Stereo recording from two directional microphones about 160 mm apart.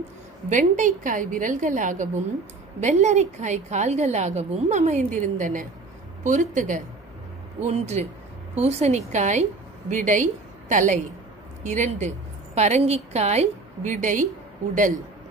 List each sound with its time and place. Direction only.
0.5 s a woman's voice: 50° right (ahead or behind)